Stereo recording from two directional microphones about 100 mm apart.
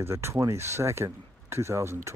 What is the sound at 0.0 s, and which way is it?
Speech, 25° right (ahead or behind).